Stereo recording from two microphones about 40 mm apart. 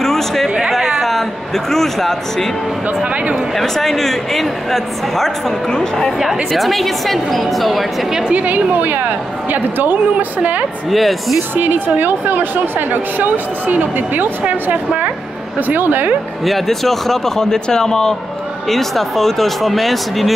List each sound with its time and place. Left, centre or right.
0.0 s a sound: centre
1.0 s speech: centre
3.5 s speech: centre
8.3 s speech: right
10.9 s speech: centre
11.5 s speech: right
15.6 s speech: right
16.4 s speech: centre